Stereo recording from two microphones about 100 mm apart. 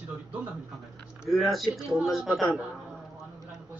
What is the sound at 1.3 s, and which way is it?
A man's voice, centre (ahead or behind).